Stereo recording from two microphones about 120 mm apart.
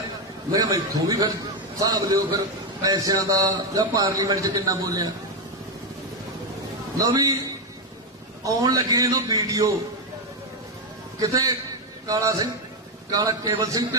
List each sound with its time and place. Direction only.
0.5 s a man's voice: 30° right (ahead or behind)
7.0 s a man's voice: 30° right (ahead or behind)
8.5 s a man's voice: 30° right (ahead or behind)
11.1 s a man's voice: 30° right (ahead or behind)